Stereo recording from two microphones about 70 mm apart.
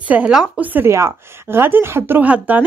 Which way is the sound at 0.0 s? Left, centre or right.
Right.